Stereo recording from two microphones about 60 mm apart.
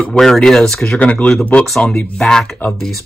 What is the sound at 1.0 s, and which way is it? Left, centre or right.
A man's voice, left.